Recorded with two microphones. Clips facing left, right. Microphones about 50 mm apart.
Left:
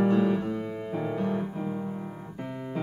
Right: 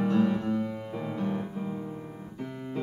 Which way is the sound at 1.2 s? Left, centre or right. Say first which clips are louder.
Left 2 dB; left.